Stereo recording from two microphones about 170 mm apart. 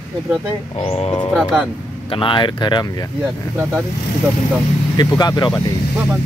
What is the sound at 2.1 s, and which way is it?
Speech, 30° left (ahead or behind).